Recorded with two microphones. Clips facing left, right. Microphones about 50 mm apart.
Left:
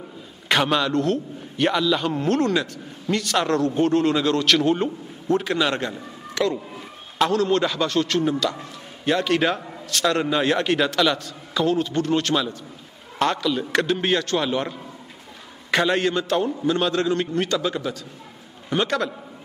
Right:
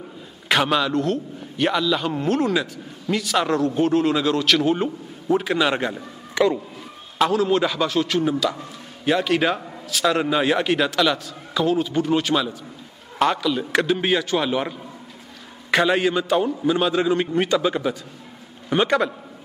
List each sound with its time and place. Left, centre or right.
0.5 s a man's voice: centre
7.2 s a man's voice: centre